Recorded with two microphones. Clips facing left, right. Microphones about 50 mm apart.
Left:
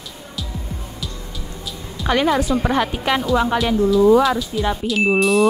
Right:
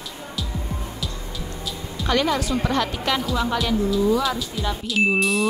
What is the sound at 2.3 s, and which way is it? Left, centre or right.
A woman's voice, left.